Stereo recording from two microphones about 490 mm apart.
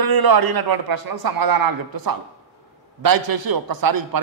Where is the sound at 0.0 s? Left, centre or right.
Right.